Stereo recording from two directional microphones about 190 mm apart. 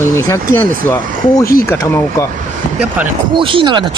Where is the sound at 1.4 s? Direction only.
50° left (ahead or behind).